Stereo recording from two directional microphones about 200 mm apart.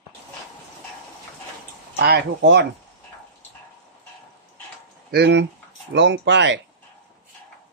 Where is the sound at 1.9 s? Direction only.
60° right (ahead or behind).